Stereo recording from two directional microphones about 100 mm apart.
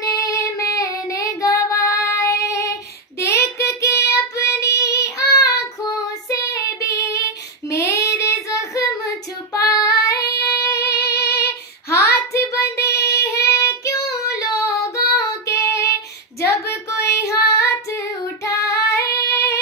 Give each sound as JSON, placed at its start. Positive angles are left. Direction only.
{"t": 0.0, "sound": "child singing", "side_deg": 35}